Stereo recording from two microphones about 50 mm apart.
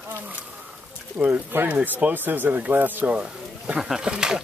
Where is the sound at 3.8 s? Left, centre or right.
Centre.